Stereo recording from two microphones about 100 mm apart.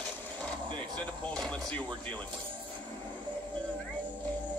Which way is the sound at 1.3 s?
10° left (ahead or behind).